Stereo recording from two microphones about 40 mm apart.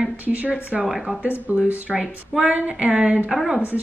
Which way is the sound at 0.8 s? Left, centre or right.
Centre.